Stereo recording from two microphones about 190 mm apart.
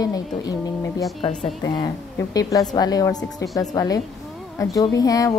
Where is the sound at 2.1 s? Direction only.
20° left (ahead or behind).